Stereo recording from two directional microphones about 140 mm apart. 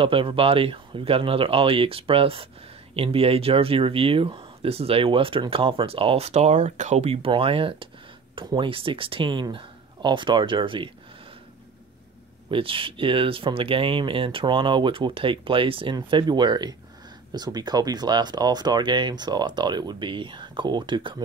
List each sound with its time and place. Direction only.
0.0 s speech: 40° right (ahead or behind)
12.4 s speech: 40° right (ahead or behind)